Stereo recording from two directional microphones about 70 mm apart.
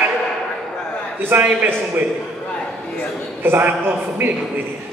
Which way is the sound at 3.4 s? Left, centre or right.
Right.